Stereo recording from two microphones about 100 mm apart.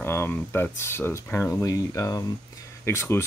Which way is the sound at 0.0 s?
25° left (ahead or behind).